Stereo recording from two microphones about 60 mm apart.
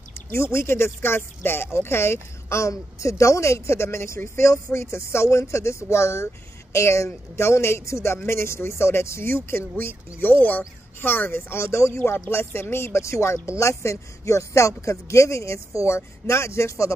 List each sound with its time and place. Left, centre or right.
0.3 s speech: left
12.0 s speech: left